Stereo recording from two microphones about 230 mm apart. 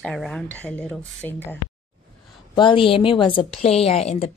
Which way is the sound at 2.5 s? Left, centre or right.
Left.